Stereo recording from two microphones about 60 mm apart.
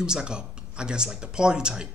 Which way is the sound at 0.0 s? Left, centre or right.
Centre.